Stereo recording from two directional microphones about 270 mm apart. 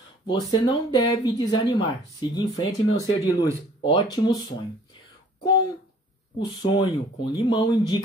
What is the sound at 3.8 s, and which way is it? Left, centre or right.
Speech, centre.